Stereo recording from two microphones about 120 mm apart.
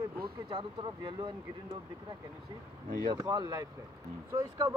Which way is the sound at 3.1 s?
35° right (ahead or behind).